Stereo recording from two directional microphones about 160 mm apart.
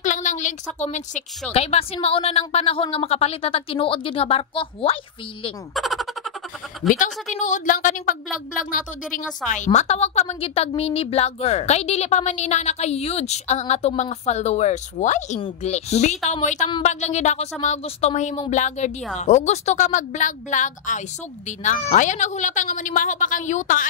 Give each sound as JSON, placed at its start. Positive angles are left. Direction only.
{"t": 0.0, "sound": "a woman's voice", "side_deg": 50}
{"t": 5.8, "sound": "a sound", "side_deg": 0}
{"t": 6.9, "sound": "a woman's voice", "side_deg": 55}